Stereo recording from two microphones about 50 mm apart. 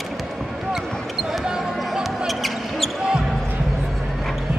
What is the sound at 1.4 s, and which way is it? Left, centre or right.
Music, centre.